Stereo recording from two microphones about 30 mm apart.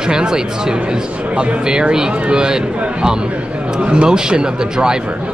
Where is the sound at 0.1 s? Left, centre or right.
Right.